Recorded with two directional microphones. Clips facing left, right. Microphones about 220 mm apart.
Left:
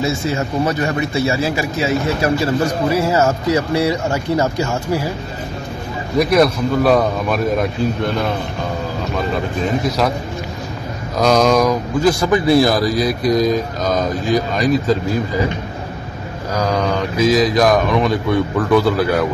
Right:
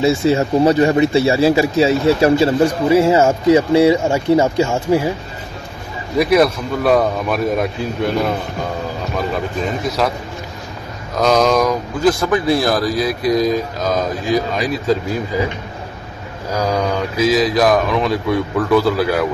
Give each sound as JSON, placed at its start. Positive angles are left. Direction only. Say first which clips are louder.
{"t": 0.0, "sound": "speech", "louder": "right 5 dB", "side_deg": -30}
{"t": 6.1, "sound": "speech", "louder": "even", "side_deg": 0}
{"t": 9.6, "sound": "speech", "louder": "left 2 dB", "side_deg": 0}
{"t": 11.1, "sound": "speech", "louder": "left 1 dB", "side_deg": 0}
{"t": 16.5, "sound": "speech", "louder": "even", "side_deg": -10}